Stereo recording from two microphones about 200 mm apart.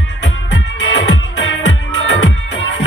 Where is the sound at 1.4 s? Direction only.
70° left (ahead or behind).